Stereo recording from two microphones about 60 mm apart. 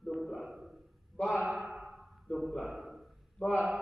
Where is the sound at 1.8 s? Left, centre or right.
Centre.